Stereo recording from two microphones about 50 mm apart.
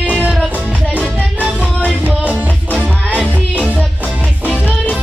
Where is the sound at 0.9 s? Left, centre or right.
Right.